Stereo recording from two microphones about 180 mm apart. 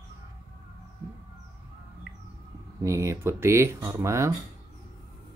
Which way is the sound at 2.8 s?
15° right (ahead or behind).